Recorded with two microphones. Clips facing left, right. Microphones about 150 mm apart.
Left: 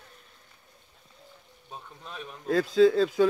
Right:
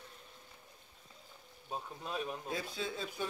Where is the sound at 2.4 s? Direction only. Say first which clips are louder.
Left 19 dB; 90° left.